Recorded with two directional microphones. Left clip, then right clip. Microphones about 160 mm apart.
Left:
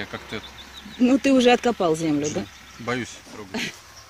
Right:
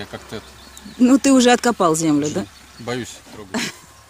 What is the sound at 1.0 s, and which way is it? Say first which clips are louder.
Speech: right 4 dB; 20° right (ahead or behind).